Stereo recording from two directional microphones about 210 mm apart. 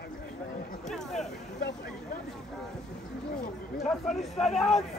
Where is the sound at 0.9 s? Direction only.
Centre (ahead or behind).